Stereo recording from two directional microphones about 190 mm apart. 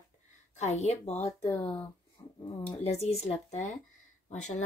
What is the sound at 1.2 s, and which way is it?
Speech, 15° left (ahead or behind).